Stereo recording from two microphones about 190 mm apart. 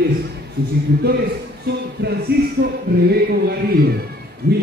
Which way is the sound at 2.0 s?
55° right (ahead or behind).